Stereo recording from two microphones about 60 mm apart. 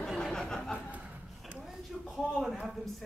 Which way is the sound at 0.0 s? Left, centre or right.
Centre.